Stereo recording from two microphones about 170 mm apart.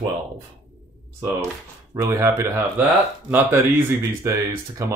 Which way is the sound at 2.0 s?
15° right (ahead or behind).